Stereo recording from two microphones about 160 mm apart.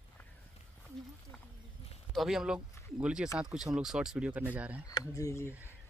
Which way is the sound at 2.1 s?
Centre (ahead or behind).